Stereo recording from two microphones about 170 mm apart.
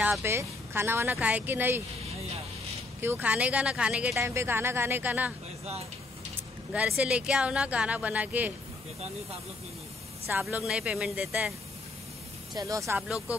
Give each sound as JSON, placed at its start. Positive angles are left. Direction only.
{"t": 0.0, "sound": "speech", "side_deg": -10}
{"t": 3.0, "sound": "speech", "side_deg": -10}
{"t": 4.2, "sound": "speech", "side_deg": -15}
{"t": 6.7, "sound": "speech", "side_deg": -5}
{"t": 10.4, "sound": "speech", "side_deg": -5}
{"t": 12.5, "sound": "speech", "side_deg": -20}